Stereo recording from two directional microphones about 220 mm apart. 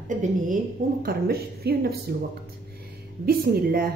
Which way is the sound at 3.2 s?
45° right (ahead or behind).